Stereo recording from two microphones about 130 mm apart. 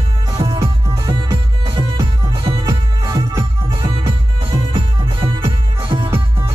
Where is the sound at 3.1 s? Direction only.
35° right (ahead or behind).